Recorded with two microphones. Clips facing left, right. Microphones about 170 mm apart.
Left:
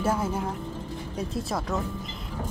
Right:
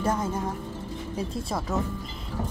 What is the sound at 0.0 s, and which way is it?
Speech, 10° left (ahead or behind).